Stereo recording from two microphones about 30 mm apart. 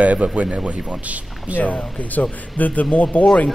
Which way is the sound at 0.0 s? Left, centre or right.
Right.